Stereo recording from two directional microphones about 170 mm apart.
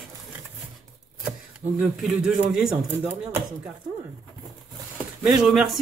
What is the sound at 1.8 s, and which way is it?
A man's voice, 5° right (ahead or behind).